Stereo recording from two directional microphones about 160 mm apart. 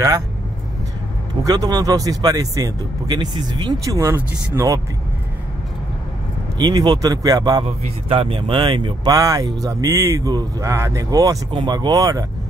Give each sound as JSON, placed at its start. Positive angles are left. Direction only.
{"t": 1.4, "sound": "speech", "side_deg": -25}
{"t": 6.6, "sound": "speech", "side_deg": -25}
{"t": 8.1, "sound": "speech", "side_deg": -35}